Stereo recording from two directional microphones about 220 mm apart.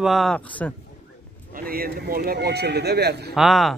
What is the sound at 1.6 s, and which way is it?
Speech, 40° right (ahead or behind).